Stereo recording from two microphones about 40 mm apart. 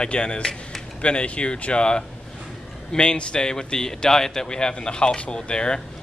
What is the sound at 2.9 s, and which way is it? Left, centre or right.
A man's voice, left.